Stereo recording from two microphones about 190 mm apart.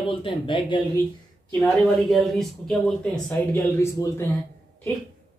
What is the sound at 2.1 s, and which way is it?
Speech, centre (ahead or behind).